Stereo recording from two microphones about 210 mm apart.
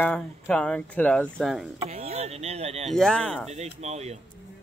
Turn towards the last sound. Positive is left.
turn(degrees=-30)  # may be behind; listen again after turning